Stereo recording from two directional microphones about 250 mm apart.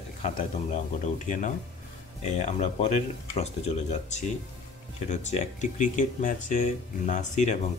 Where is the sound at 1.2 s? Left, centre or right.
Left.